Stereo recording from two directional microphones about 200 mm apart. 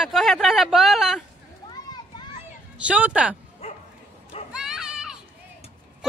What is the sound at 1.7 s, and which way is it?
Children playing, 20° left (ahead or behind).